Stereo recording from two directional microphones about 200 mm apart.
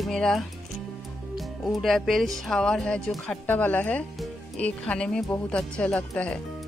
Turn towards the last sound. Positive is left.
turn(degrees=5)  # may be behind; listen again after turning